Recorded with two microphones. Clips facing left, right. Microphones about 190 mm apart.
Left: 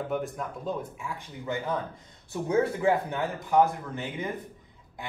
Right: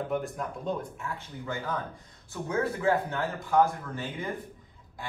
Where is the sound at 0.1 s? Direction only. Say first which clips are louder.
Even; centre (ahead or behind).